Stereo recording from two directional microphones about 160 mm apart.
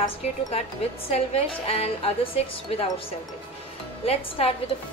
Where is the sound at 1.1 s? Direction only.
40° left (ahead or behind).